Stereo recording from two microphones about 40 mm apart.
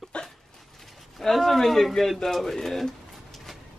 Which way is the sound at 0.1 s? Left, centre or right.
Left.